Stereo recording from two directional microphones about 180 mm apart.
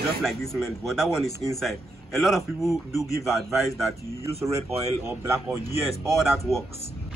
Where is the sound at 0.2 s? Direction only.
Centre (ahead or behind).